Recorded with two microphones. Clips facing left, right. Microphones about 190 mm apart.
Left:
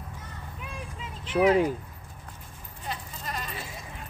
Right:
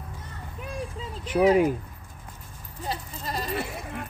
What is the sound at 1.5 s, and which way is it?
Speech, 10° right (ahead or behind).